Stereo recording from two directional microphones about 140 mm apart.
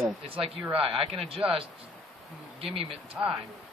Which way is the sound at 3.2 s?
5° right (ahead or behind).